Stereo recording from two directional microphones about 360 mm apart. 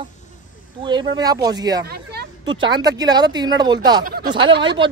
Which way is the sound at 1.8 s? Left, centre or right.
Right.